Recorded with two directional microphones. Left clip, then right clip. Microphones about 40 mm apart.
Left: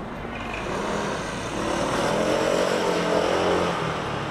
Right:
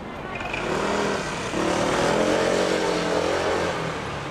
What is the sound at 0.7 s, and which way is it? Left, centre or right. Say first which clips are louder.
Vehicle: right 3 dB; right.